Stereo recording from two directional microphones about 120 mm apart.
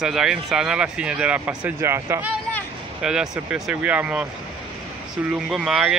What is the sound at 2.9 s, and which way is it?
Speech, 5° right (ahead or behind).